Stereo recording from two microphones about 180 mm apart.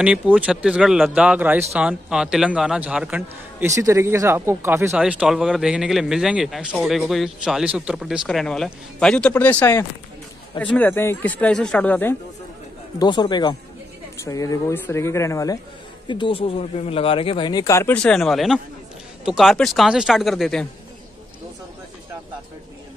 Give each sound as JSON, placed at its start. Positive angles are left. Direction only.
{"t": 0.0, "sound": "speech", "side_deg": -5}
{"t": 3.7, "sound": "speech", "side_deg": -15}
{"t": 13.0, "sound": "speech", "side_deg": 25}
{"t": 16.1, "sound": "speech", "side_deg": 30}